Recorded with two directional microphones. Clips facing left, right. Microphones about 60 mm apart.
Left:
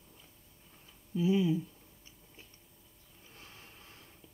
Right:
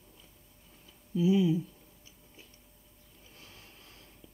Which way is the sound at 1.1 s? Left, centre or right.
Left.